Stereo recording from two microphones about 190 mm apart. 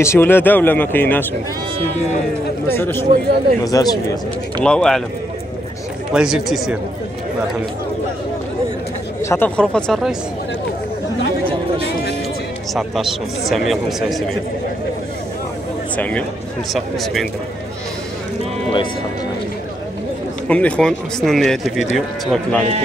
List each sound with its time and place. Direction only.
0.0 s speech: 15° left (ahead or behind)
2.7 s speech: 10° left (ahead or behind)
4.6 s speech: 5° left (ahead or behind)
6.1 s speech: 5° right (ahead or behind)
9.2 s speech: 10° left (ahead or behind)
12.7 s speech: centre (ahead or behind)
16.0 s speech: 5° left (ahead or behind)
20.4 s speech: 5° left (ahead or behind)